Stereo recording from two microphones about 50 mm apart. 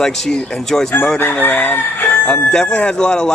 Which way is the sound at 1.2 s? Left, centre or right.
Left.